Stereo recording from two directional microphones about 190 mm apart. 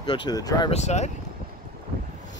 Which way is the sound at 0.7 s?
35° left (ahead or behind).